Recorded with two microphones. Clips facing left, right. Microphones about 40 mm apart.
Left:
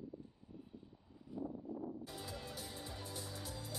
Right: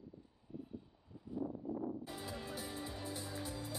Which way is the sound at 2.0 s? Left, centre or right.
Right.